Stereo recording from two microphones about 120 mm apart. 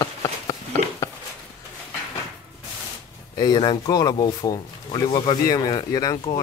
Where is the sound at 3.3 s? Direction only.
35° left (ahead or behind).